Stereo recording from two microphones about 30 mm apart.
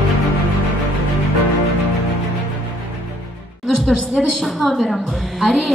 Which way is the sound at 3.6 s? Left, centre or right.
Centre.